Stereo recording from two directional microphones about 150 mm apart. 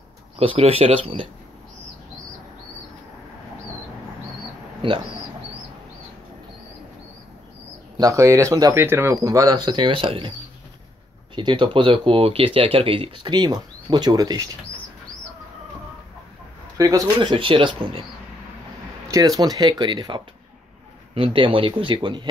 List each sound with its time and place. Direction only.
0.4 s speech: 40° right (ahead or behind)
4.8 s speech: 35° right (ahead or behind)
8.0 s speech: 20° right (ahead or behind); by 10.3 s 35° right (ahead or behind)
11.3 s speech: 30° right (ahead or behind)
16.7 s speech: 20° right (ahead or behind)
19.0 s speech: 20° right (ahead or behind)